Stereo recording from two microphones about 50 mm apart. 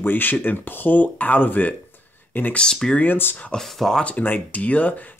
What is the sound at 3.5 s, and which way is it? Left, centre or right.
Speech, centre.